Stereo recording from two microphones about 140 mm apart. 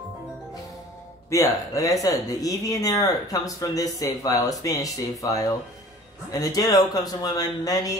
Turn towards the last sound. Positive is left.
turn(degrees=25)  # may be behind; listen again after turning